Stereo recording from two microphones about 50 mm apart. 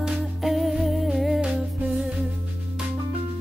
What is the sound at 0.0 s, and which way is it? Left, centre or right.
Music, centre.